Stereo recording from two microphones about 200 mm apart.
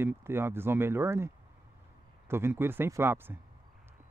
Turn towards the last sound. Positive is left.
turn(degrees=-10)  # may be behind; listen again after turning